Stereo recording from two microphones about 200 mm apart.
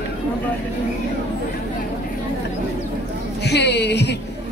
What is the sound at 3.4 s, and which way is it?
Speech, 55° left (ahead or behind).